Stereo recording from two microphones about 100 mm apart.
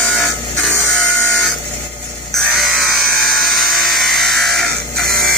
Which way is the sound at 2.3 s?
Centre (ahead or behind).